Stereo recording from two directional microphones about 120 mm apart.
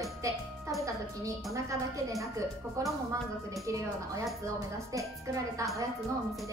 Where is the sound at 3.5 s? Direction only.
25° right (ahead or behind).